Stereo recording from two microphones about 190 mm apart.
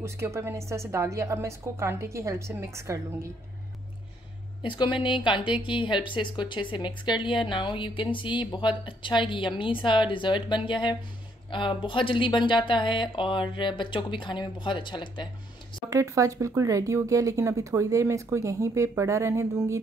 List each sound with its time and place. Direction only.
0.0 s speech: 15° right (ahead or behind)
4.6 s a woman's voice: 25° left (ahead or behind)
15.9 s speech: 15° right (ahead or behind)